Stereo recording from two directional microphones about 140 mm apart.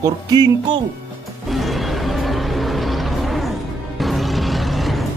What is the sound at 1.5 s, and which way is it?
Music, centre (ahead or behind).